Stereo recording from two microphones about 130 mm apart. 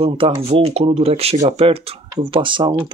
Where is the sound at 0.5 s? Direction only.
50° right (ahead or behind).